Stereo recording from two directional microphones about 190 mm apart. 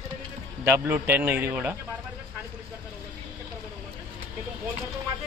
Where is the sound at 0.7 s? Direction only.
10° right (ahead or behind).